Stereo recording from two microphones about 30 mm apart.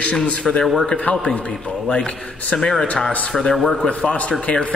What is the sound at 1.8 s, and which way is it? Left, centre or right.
Speech, left.